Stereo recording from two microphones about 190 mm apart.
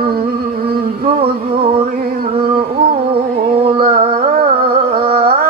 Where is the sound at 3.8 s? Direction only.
50° right (ahead or behind).